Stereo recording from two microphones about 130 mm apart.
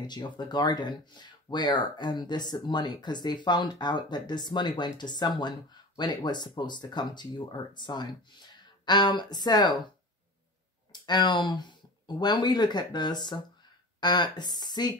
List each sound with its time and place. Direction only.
0.0 s speech: 35° left (ahead or behind)
10.9 s speech: 35° left (ahead or behind)